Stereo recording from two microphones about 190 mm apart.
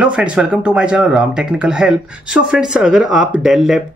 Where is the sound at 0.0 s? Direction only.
5° right (ahead or behind).